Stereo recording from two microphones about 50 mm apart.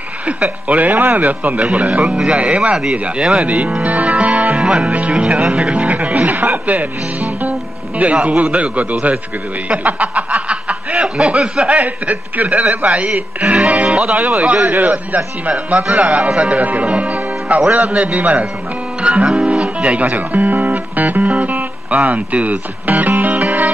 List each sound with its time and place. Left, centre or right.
0.3 s speech: right
15.9 s speech: right
18.9 s guitar: right
19.3 s speech: right